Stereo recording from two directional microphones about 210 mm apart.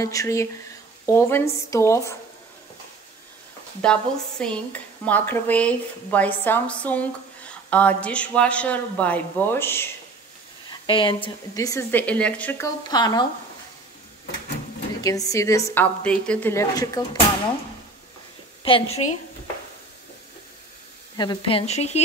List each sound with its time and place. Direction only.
0.0 s speech: 15° left (ahead or behind)
3.8 s speech: 5° left (ahead or behind)
10.7 s speech: 25° left (ahead or behind); by 12.6 s 5° left (ahead or behind)
12.8 s speech: 20° left (ahead or behind)
15.0 s speech: 15° left (ahead or behind)
18.6 s speech: 25° left (ahead or behind)
21.2 s speech: 25° left (ahead or behind)